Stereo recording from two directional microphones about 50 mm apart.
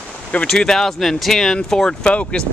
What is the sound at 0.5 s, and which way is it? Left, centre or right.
Speech, centre.